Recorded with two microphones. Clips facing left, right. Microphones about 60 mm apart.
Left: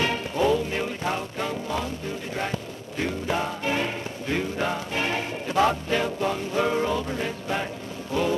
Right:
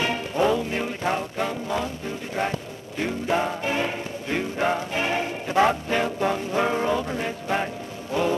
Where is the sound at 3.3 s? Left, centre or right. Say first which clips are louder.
Right 3 dB; centre.